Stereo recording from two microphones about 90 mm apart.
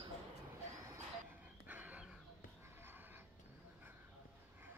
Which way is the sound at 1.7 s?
20° right (ahead or behind).